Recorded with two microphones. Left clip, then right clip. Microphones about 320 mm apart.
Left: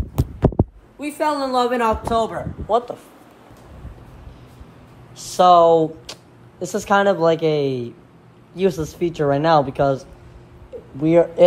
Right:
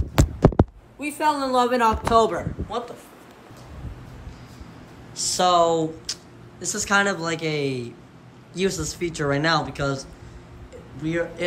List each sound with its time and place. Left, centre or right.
0.2 s heart sounds: centre
0.9 s a woman's voice: centre
5.1 s a woman's voice: centre
11.1 s a woman's voice: centre